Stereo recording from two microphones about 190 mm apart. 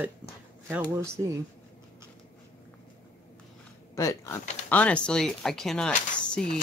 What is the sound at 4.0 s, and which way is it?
Speech, 15° left (ahead or behind).